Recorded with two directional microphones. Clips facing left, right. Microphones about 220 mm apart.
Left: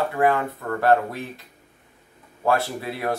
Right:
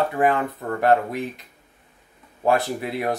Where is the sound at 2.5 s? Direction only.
15° right (ahead or behind).